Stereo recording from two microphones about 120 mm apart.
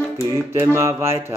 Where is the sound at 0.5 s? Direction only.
20° right (ahead or behind).